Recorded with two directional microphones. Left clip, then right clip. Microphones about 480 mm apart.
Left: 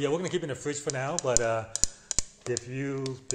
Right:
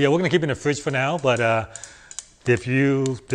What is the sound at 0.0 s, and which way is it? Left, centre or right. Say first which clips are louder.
Speech: right 10 dB; right.